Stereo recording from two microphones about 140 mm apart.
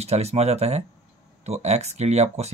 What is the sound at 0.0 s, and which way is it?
Speech, 50° right (ahead or behind).